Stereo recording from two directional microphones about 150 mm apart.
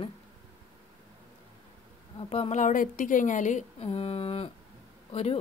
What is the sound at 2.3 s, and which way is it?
Speech, 45° left (ahead or behind).